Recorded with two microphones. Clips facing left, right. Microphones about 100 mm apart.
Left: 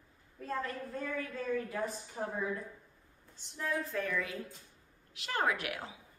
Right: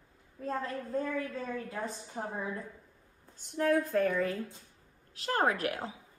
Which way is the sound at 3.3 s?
50° right (ahead or behind).